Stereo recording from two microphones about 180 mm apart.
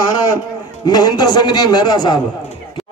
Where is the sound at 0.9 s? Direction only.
25° left (ahead or behind).